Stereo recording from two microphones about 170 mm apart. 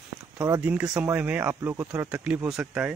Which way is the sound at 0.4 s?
10° right (ahead or behind).